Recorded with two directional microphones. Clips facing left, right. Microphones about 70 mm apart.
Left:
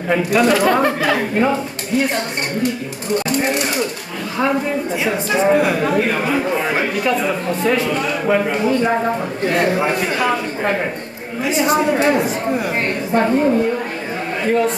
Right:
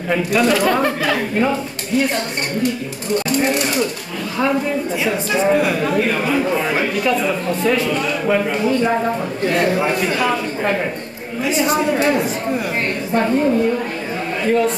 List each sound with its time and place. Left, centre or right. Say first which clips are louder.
0.3 s a man's voice: left 1 dB; centre